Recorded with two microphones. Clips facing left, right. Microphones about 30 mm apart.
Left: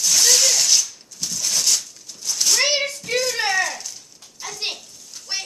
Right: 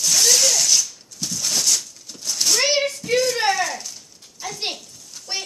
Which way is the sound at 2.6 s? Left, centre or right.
Centre.